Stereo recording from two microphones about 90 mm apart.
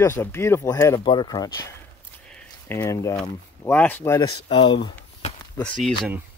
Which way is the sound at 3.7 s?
15° left (ahead or behind).